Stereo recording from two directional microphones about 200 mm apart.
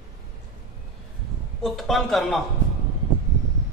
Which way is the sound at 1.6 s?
Centre (ahead or behind).